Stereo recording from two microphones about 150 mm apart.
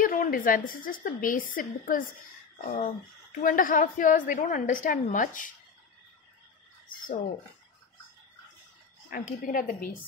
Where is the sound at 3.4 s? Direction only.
65° left (ahead or behind).